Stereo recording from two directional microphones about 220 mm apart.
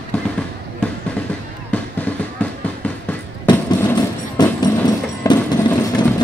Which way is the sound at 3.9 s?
20° left (ahead or behind).